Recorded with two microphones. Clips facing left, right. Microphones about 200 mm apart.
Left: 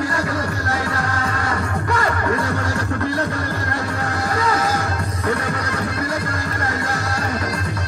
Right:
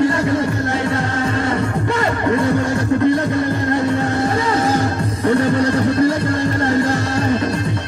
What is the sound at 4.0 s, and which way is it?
Music, 25° right (ahead or behind).